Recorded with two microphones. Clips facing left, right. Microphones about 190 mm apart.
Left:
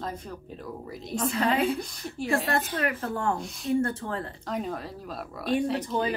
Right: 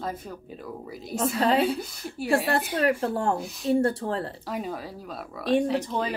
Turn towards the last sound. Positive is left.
turn(degrees=0)  # may be behind; listen again after turning